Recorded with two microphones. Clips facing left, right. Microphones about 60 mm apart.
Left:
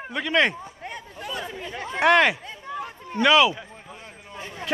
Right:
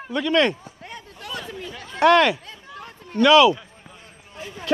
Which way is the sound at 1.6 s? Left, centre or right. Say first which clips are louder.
Left 5 dB; left.